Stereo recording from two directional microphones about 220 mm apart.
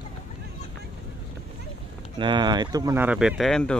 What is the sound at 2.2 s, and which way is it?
Speech, 20° right (ahead or behind).